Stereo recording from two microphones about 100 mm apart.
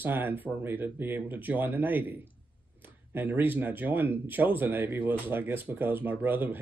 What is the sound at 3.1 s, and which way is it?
Speech, 20° right (ahead or behind).